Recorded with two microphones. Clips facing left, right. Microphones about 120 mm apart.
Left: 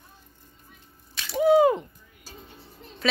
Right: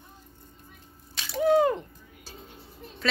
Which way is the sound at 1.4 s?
10° left (ahead or behind).